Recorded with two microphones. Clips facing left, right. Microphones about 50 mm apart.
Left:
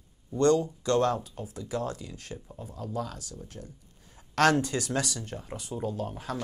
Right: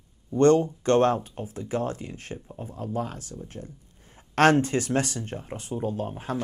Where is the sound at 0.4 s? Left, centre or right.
Right.